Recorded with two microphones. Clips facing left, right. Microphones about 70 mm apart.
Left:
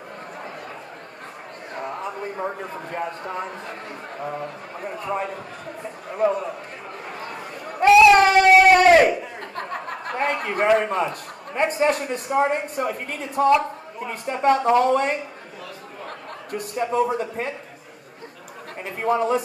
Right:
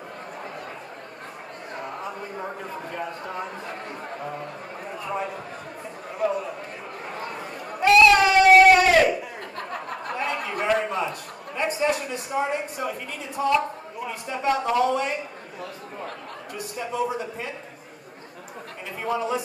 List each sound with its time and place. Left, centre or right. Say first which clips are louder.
2.1 s a sound: left 5 dB; left
2.9 s speech: left 5 dB; left
3.3 s speech: left 2 dB; left
7.1 s chatter: right 1 dB; right
8.1 s a sound: left 2 dB; left
9.6 s chuckle: left 3 dB; left
10.8 s a man's voice: left 3 dB; left
16.5 s a man's voice: left 6 dB; left
18.9 s a man's voice: left 5 dB; left